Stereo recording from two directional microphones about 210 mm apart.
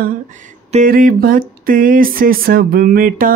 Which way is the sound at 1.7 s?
40° right (ahead or behind).